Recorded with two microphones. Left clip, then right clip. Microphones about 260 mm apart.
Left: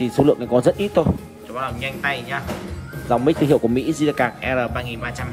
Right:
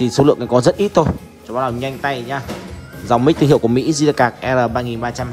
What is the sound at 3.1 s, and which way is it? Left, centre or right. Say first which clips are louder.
Speech: right 4 dB; left.